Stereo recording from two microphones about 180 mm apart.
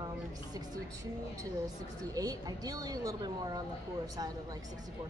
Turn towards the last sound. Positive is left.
turn(degrees=-20)  # may be behind; listen again after turning